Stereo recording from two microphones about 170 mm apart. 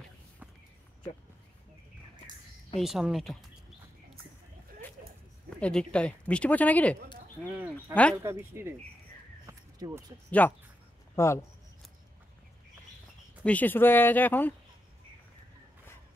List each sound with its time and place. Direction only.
2.8 s a woman's voice: centre (ahead or behind)
5.6 s speech: 5° left (ahead or behind)
8.2 s speech: 15° right (ahead or behind)
9.5 s a sound: 20° right (ahead or behind)
10.4 s speech: 10° left (ahead or behind)
13.4 s speech: 10° left (ahead or behind)